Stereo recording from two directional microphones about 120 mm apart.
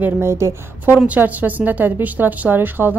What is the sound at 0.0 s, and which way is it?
A woman's voice, 20° right (ahead or behind).